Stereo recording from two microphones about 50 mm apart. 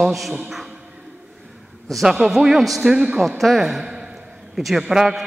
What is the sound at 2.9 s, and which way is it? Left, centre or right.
Speech, centre.